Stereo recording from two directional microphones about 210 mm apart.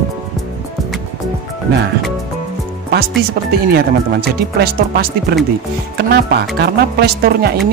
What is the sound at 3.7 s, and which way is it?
Speech, 50° right (ahead or behind).